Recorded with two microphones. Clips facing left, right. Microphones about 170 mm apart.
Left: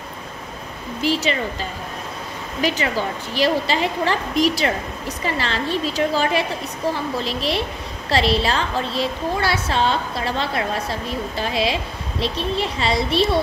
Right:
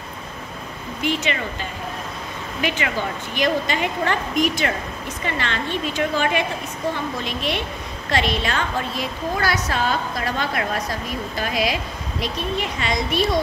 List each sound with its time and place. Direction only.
1.0 s a woman's voice: 35° left (ahead or behind)
3.3 s a woman's voice: 30° left (ahead or behind)